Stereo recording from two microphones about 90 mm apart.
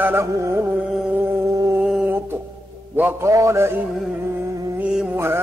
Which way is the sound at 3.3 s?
35° right (ahead or behind).